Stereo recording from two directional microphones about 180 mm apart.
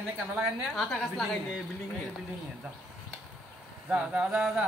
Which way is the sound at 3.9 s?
5° right (ahead or behind).